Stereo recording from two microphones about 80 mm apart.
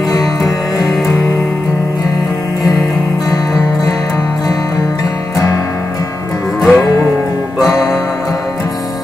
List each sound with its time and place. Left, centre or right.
0.1 s music: left
3.3 s music: left
6.6 s music: centre